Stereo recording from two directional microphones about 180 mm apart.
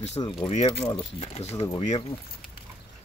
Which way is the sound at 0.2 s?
30° left (ahead or behind).